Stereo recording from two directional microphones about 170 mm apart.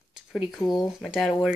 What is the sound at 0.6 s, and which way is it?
Speech, 20° left (ahead or behind).